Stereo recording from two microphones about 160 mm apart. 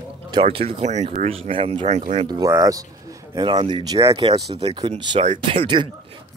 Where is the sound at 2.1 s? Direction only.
25° right (ahead or behind).